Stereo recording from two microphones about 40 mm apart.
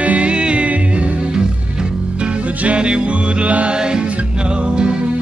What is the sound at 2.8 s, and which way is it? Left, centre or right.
Music, right.